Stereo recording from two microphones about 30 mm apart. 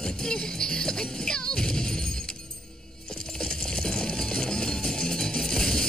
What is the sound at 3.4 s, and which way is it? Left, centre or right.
Music, left.